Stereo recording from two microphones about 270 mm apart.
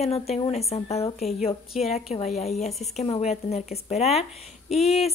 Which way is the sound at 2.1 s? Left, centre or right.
Left.